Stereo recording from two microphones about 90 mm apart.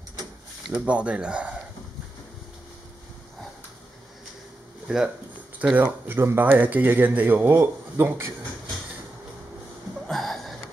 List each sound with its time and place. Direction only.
0.8 s speech: 15° right (ahead or behind)
4.8 s speech: 5° right (ahead or behind)
5.6 s speech: 20° right (ahead or behind)
10.0 s a sound: centre (ahead or behind)